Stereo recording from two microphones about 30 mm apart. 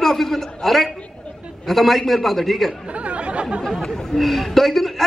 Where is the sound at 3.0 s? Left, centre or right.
Right.